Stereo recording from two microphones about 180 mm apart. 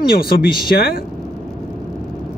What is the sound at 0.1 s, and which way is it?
Speech, 55° left (ahead or behind).